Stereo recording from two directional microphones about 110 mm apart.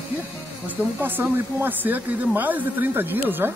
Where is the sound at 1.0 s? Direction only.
20° right (ahead or behind).